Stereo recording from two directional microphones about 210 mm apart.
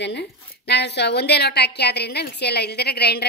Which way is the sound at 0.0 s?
55° left (ahead or behind).